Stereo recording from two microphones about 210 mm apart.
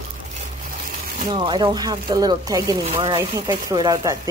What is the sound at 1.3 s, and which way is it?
Speech, 20° right (ahead or behind).